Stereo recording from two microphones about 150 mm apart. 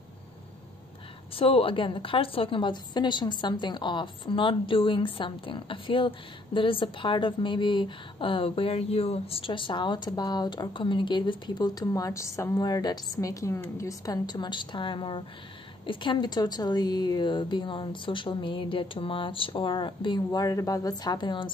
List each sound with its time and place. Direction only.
1.3 s a woman's voice: 40° left (ahead or behind)
20.2 s speech: 20° left (ahead or behind)